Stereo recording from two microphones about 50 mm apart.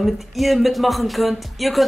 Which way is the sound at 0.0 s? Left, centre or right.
Centre.